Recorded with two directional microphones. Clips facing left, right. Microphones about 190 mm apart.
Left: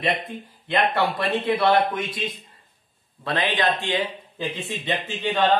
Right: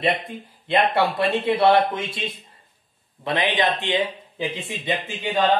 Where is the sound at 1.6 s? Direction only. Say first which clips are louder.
Right 4 dB; 25° right (ahead or behind).